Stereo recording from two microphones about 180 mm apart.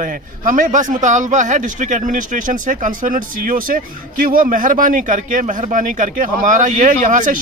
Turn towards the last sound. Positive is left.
turn(degrees=-45)  # may be behind; listen again after turning